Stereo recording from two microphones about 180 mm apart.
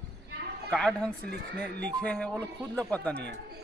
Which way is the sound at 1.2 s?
60° right (ahead or behind).